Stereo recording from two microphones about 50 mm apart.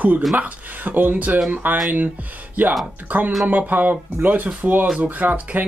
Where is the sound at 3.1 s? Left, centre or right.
Right.